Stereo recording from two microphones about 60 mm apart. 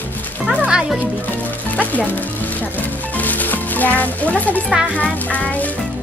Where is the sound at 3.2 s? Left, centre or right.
Left.